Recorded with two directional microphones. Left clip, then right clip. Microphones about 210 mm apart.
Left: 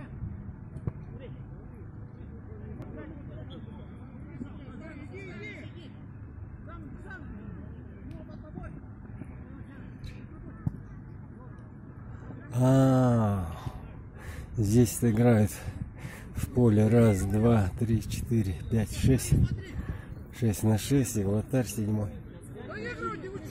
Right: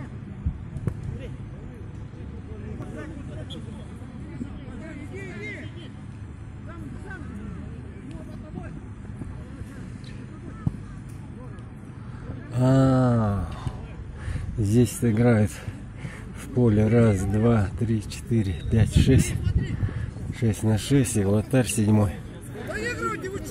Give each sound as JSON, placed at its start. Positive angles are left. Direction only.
{"t": 5.1, "sound": "vehicle", "side_deg": -10}
{"t": 12.5, "sound": "a sound", "side_deg": 10}
{"t": 14.6, "sound": "speech", "side_deg": 15}
{"t": 16.0, "sound": "a sound", "side_deg": 15}
{"t": 17.4, "sound": "a man's voice", "side_deg": 15}
{"t": 21.8, "sound": "a man's voice", "side_deg": -20}
{"t": 22.7, "sound": "hubbub", "side_deg": -50}